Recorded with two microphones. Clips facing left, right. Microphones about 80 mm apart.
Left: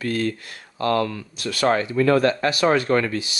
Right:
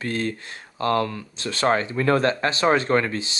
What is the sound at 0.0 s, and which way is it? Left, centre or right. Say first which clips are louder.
Speech: left 2 dB; right.